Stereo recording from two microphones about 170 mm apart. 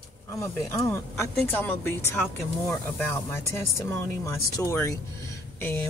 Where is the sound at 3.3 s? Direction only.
15° left (ahead or behind).